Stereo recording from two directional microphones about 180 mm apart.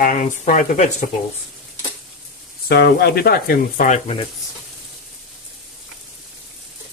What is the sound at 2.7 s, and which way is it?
Speech, 60° left (ahead or behind).